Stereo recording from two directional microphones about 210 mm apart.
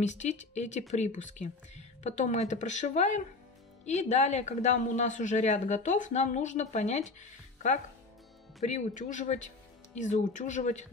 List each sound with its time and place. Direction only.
0.0 s speech: 35° left (ahead or behind)